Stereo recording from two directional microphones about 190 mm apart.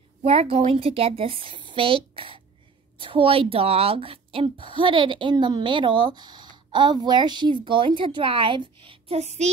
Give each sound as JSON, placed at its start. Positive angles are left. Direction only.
{"t": 0.2, "sound": "a woman's voice", "side_deg": -30}
{"t": 8.8, "sound": "child singing", "side_deg": -30}